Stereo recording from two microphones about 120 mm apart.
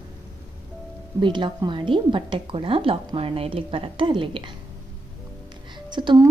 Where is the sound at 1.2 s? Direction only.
40° right (ahead or behind).